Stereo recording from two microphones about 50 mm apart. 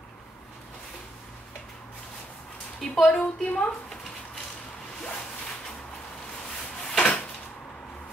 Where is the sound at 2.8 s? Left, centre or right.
Centre.